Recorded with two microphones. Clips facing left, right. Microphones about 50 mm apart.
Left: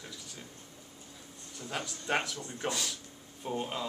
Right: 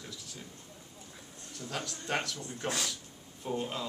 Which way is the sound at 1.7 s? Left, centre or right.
Centre.